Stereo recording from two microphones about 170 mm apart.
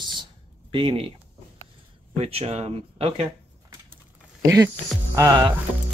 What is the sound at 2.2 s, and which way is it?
Speech, 35° right (ahead or behind).